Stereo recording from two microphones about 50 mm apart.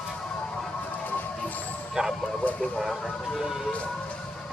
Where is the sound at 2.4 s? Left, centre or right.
Left.